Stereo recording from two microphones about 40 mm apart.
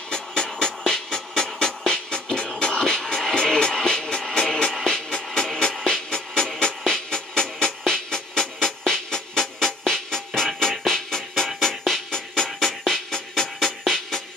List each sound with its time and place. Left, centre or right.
0.1 s music: centre